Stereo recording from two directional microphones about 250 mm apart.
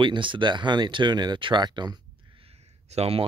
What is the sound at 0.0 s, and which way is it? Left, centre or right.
Speech, centre.